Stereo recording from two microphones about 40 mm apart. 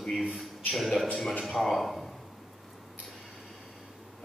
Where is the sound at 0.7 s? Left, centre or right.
Centre.